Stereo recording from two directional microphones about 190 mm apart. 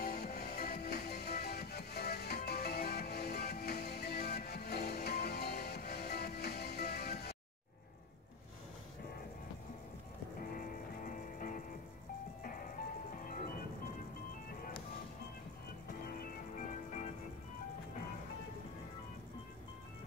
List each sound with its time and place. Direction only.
0.0 s music: 50° left (ahead or behind)
10.5 s music: 45° left (ahead or behind)
16.1 s music: 50° left (ahead or behind)